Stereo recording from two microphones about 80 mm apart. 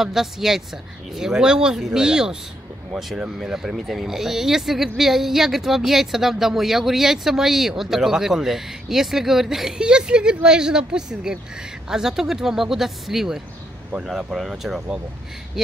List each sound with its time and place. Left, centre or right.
0.0 s speech: centre